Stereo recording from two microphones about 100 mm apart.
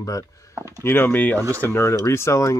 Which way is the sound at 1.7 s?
25° left (ahead or behind).